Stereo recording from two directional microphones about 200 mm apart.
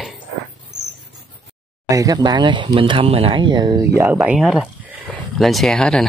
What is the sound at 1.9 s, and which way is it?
Speech, 15° right (ahead or behind).